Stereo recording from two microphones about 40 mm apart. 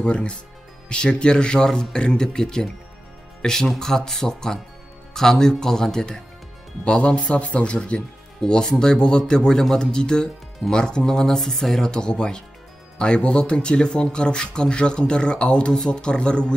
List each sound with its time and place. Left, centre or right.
0.0 s speech: left; by 11.9 s centre
11.9 s speech: left